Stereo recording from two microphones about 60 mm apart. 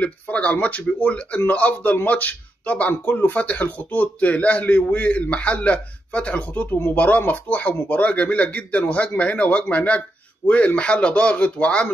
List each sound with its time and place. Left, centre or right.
0.0 s speech: left